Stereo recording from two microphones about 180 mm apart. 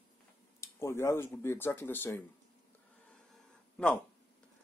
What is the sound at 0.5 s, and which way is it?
Speech, 15° left (ahead or behind).